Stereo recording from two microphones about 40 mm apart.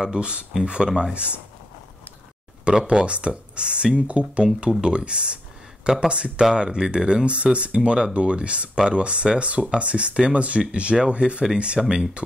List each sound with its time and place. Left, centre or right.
0.1 s speech: right
1.1 s speech: right
2.9 s speech: right
4.6 s speech: right